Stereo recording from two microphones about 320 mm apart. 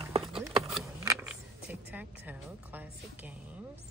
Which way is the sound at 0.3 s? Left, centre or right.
Centre.